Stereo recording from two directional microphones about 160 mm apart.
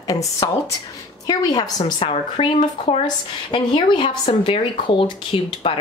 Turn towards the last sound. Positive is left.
turn(degrees=35)  # may be behind; listen again after turning